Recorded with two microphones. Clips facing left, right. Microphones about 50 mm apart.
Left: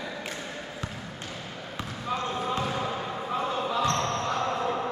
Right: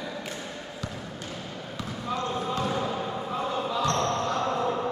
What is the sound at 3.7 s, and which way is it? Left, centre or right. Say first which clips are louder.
Basketball bounce: left 1 dB; left.